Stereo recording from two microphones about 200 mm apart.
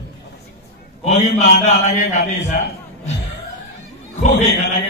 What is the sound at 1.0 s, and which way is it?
A man's voice, 35° left (ahead or behind).